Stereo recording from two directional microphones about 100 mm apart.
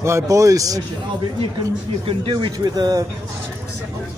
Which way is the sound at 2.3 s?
45° right (ahead or behind).